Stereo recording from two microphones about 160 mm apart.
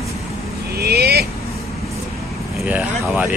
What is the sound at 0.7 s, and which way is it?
Vehicle, 80° right.